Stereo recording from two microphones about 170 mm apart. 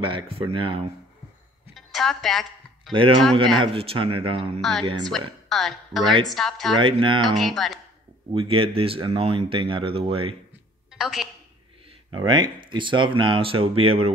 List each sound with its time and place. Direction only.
0.0 s speech: 30° right (ahead or behind)
1.8 s a sound: centre (ahead or behind)
2.9 s speech: 30° right (ahead or behind)
4.6 s a woman's voice: centre (ahead or behind)
6.7 s speech: 30° right (ahead or behind)
7.3 s a woman's voice: centre (ahead or behind)
8.3 s speech: 35° right (ahead or behind)
10.9 s a woman's voice: centre (ahead or behind)
12.1 s speech: 25° right (ahead or behind)